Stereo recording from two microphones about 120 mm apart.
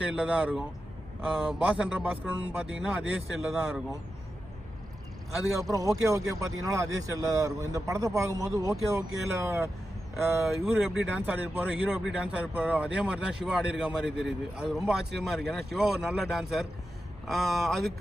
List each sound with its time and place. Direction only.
0.0 s speech: 10° right (ahead or behind)
5.7 s speech: 30° right (ahead or behind)
10.6 s speech: 5° right (ahead or behind)